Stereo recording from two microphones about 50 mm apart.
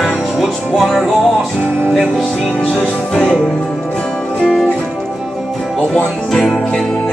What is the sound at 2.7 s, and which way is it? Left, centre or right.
Speech, centre.